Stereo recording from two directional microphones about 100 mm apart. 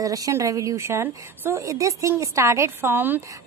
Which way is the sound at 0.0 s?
35° right (ahead or behind).